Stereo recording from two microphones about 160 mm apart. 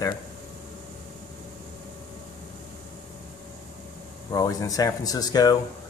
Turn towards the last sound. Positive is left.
turn(degrees=25)  # may be behind; listen again after turning